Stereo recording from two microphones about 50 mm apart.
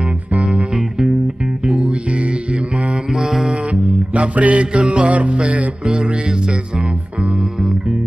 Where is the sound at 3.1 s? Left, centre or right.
Centre.